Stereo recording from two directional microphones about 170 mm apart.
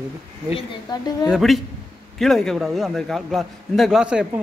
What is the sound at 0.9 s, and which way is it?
Speech, 25° left (ahead or behind).